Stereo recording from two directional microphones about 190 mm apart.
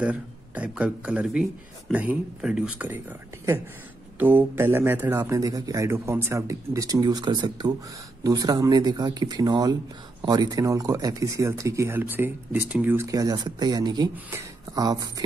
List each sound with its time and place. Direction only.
0.0 s speech: 5° right (ahead or behind)